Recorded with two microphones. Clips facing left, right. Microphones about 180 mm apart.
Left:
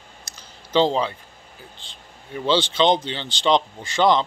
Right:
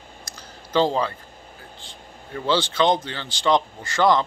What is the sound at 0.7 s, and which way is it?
Speech, 20° left (ahead or behind).